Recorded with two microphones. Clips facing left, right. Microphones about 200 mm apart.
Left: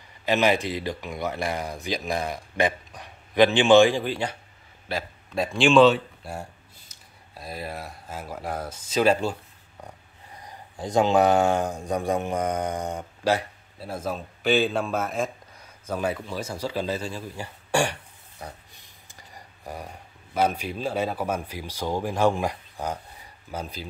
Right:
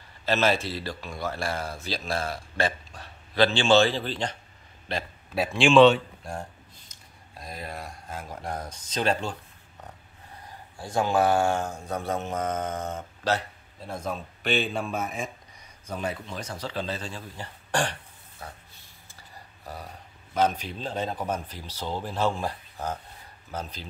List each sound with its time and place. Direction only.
0.2 s speech: 15° left (ahead or behind)
5.3 s speech: 5° right (ahead or behind)
10.8 s speech: 20° left (ahead or behind); by 15.0 s centre (ahead or behind)
16.3 s speech: 10° left (ahead or behind)
18.4 s a sound: 15° left (ahead or behind)
20.3 s speech: 10° left (ahead or behind)